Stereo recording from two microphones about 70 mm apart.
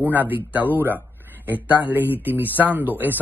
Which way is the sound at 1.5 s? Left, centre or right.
Left.